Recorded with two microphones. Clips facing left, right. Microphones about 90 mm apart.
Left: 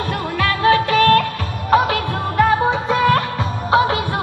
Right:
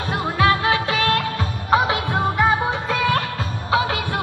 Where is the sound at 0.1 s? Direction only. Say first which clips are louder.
Right 5 dB; 20° right (ahead or behind).